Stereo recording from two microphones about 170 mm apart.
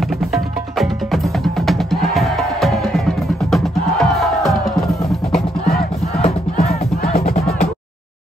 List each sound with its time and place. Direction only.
0.7 s music: centre (ahead or behind)
6.6 s music: 65° left (ahead or behind)